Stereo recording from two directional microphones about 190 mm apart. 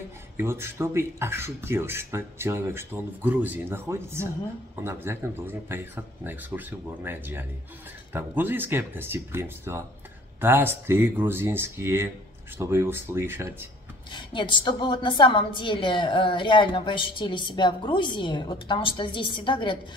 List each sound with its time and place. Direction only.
0.4 s speech: 15° right (ahead or behind)
14.1 s a woman's voice: 25° left (ahead or behind)